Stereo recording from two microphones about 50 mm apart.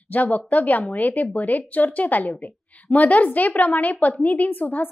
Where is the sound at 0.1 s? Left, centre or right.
Left.